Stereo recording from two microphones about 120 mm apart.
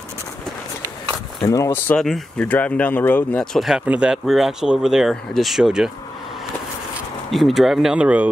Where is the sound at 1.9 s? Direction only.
5° left (ahead or behind).